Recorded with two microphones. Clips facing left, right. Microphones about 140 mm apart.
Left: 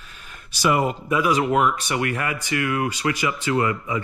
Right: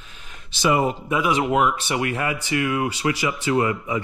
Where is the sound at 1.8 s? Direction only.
25° right (ahead or behind).